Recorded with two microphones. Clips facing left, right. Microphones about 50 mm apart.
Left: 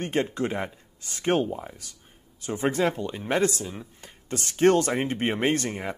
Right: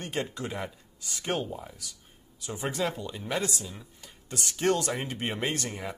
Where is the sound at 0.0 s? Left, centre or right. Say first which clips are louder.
Left 7 dB; left.